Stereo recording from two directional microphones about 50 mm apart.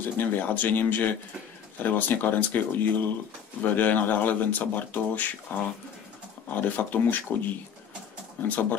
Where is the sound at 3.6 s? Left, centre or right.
Left.